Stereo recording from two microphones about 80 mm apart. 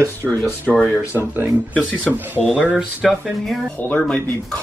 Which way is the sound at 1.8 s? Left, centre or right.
Centre.